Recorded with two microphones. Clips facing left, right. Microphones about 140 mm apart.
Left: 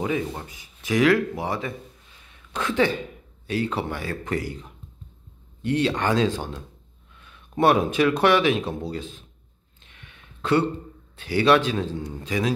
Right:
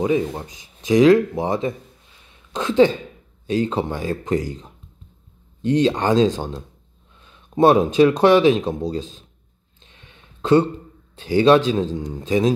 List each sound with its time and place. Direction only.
0.0 s speech: 20° right (ahead or behind)
9.8 s a sound: 25° right (ahead or behind)
11.2 s speech: 20° right (ahead or behind)